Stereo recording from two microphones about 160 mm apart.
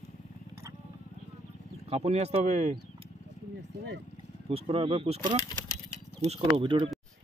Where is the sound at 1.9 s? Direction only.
40° right (ahead or behind).